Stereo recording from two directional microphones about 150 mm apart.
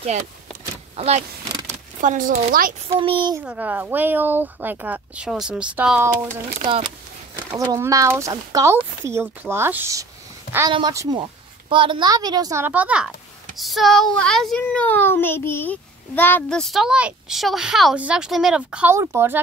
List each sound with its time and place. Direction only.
0.9 s speech: 45° right (ahead or behind)
2.0 s speech: 65° right (ahead or behind)
3.0 s a child's voice: 35° right (ahead or behind)
3.4 s speech: 10° right (ahead or behind)
6.6 s a child's voice: 35° right (ahead or behind)
7.3 s a child's voice: 20° right (ahead or behind)